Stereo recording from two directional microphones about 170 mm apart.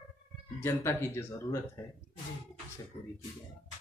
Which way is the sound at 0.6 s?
15° left (ahead or behind).